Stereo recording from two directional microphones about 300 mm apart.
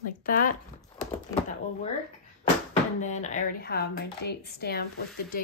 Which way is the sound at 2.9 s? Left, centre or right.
Left.